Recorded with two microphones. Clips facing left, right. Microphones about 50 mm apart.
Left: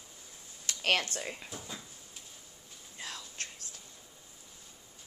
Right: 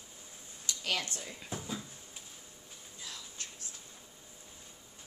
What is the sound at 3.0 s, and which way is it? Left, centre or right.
Whispering, left.